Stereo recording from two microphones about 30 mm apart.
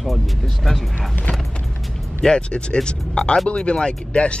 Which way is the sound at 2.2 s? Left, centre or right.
Left.